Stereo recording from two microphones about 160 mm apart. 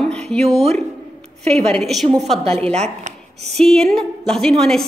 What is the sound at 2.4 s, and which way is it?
A woman's voice, 40° right (ahead or behind).